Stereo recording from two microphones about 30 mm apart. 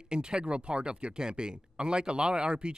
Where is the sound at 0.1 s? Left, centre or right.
Right.